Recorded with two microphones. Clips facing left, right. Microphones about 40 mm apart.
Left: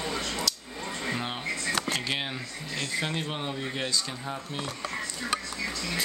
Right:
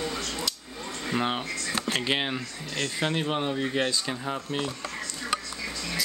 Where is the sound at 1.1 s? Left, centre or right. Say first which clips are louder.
Right 7 dB; right.